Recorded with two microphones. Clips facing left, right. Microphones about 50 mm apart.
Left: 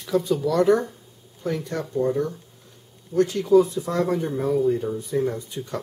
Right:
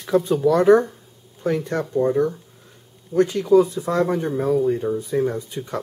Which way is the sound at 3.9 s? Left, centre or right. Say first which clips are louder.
Right 3 dB; centre.